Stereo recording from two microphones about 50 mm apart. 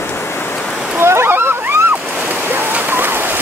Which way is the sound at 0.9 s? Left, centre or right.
Right.